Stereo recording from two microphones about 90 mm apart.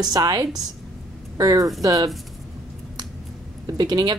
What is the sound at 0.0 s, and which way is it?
Speech, 45° right (ahead or behind).